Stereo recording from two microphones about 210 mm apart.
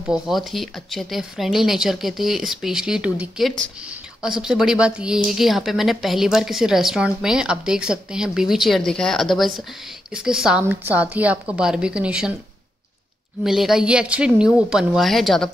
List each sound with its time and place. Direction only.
0.1 s speech: centre (ahead or behind)
13.4 s speech: centre (ahead or behind)